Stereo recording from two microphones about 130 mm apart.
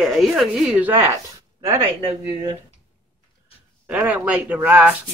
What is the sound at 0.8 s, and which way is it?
Speech, 15° right (ahead or behind).